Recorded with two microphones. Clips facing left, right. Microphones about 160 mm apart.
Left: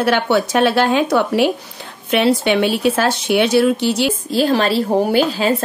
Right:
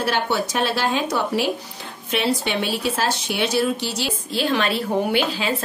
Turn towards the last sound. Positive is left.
turn(degrees=35)  # may be behind; listen again after turning